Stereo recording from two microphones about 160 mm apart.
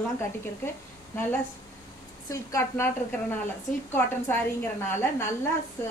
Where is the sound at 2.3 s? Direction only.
20° left (ahead or behind).